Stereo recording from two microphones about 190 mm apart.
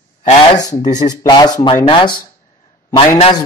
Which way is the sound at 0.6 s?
20° left (ahead or behind).